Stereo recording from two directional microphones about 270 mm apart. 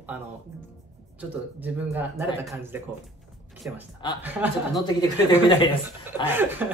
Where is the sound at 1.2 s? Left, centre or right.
Centre.